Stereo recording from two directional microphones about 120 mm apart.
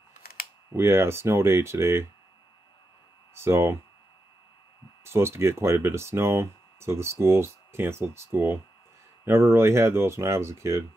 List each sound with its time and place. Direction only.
0.7 s speech: 20° right (ahead or behind)
3.3 s speech: 20° right (ahead or behind)
5.0 s speech: 20° right (ahead or behind)